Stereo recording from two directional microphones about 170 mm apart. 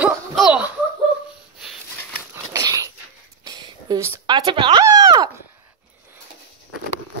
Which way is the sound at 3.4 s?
25° right (ahead or behind).